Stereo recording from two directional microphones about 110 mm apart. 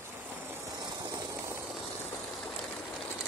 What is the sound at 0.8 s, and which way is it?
Vehicle, 35° right (ahead or behind).